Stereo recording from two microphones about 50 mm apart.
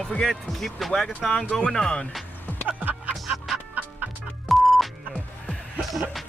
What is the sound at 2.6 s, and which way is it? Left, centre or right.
Music, right.